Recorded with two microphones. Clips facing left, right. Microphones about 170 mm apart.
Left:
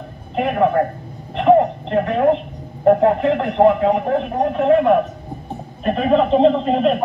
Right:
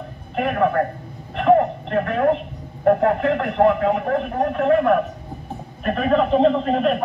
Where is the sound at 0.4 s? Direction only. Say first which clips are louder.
Left 3 dB; 20° left (ahead or behind).